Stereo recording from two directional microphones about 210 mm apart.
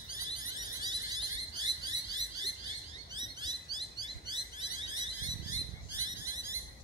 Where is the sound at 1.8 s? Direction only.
20° right (ahead or behind).